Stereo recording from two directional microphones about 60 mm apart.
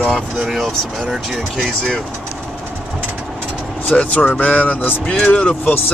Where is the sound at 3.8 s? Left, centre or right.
Left.